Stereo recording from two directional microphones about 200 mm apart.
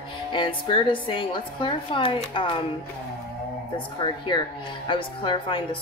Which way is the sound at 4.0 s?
25° left (ahead or behind).